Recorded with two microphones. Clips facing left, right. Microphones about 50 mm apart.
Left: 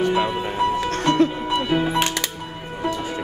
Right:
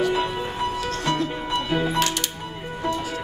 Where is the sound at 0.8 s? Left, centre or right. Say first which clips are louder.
Left 7 dB; left.